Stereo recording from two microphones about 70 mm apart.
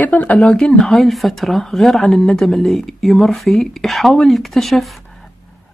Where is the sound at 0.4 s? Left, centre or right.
Centre.